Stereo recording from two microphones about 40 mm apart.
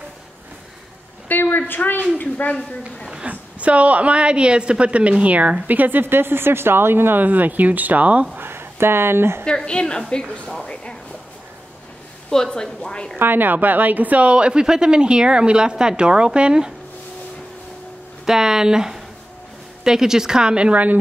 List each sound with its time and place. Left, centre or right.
1.3 s a sound: left
1.8 s a woman's voice: left
3.3 s a woman's voice: right
7.2 s speech: right
8.4 s speech: right
9.7 s a woman's voice: left
10.6 s a sound: left
12.4 s a woman's voice: left
13.2 s speech: right
18.2 s a woman's voice: centre
20.7 s a woman's voice: right